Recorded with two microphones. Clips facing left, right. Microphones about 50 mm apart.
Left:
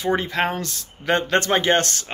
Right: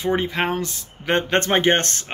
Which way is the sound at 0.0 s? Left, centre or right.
Centre.